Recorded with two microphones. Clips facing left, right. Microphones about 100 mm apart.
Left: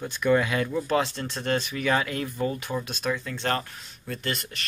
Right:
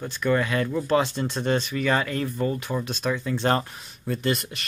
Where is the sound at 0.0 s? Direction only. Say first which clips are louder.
Left 1 dB; 10° left (ahead or behind).